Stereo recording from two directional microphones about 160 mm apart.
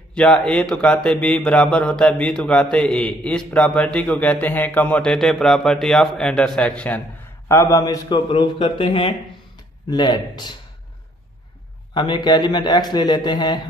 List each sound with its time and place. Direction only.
0.1 s a man's voice: 5° left (ahead or behind)
7.4 s a man's voice: 20° left (ahead or behind)
11.9 s a man's voice: 25° left (ahead or behind)